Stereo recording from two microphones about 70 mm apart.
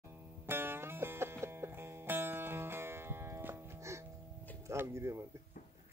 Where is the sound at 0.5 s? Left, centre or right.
Right.